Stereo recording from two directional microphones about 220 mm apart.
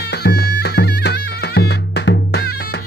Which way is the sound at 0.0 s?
50° left (ahead or behind).